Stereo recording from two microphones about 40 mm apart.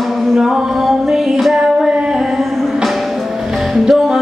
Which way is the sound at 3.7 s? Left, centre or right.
Centre.